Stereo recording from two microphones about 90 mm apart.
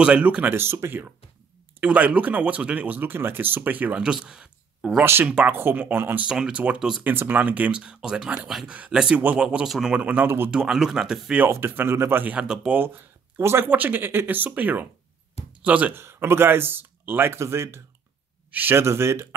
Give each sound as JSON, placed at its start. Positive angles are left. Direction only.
{"t": 0.0, "sound": "speech", "side_deg": -10}
{"t": 4.0, "sound": "speech", "side_deg": -5}
{"t": 5.0, "sound": "speech", "side_deg": -25}
{"t": 6.2, "sound": "speech", "side_deg": -10}
{"t": 7.0, "sound": "speech", "side_deg": -20}
{"t": 10.5, "sound": "speech", "side_deg": -5}
{"t": 11.4, "sound": "speech", "side_deg": -25}
{"t": 12.4, "sound": "speech", "side_deg": -10}
{"t": 13.4, "sound": "speech", "side_deg": -30}
{"t": 15.9, "sound": "speech", "side_deg": -25}